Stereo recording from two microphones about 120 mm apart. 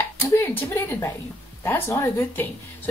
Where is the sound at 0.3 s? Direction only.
20° left (ahead or behind).